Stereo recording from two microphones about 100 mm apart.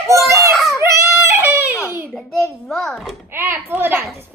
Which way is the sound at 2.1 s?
5° left (ahead or behind).